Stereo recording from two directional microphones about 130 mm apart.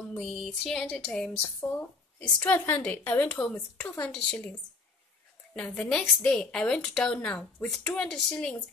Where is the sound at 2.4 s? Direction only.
15° left (ahead or behind).